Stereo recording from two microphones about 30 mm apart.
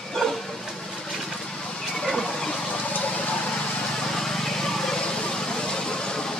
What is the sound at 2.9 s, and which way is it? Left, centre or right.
Vehicle, left.